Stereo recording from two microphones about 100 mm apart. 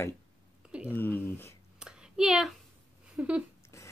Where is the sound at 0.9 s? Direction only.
20° left (ahead or behind).